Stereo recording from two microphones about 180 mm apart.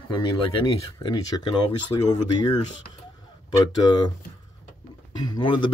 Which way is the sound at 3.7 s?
20° left (ahead or behind).